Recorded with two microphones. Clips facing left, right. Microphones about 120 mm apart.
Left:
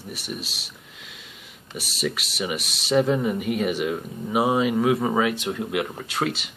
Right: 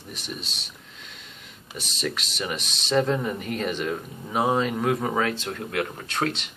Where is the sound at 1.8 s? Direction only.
5° left (ahead or behind).